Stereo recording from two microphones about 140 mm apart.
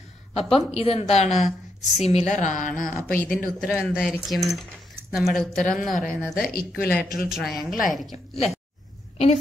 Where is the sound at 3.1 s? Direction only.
80° left.